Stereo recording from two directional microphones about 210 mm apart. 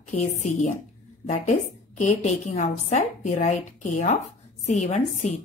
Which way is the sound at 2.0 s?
35° left (ahead or behind).